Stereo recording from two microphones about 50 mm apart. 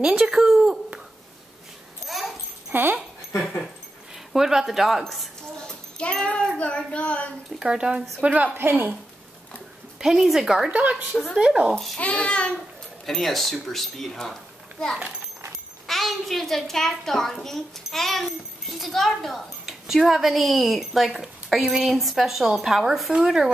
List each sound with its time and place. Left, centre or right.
0.0 s speech: centre
2.0 s dog: centre
2.7 s speech: right
4.3 s a woman's voice: centre
5.7 s speech: centre
7.5 s speech: centre
8.2 s speech: right
8.5 s a woman's voice: right
9.9 s a woman's voice: centre
10.7 s speech: right
12.0 s a child's voice: centre
13.0 s a woman's voice: centre
20.1 s a woman's voice: centre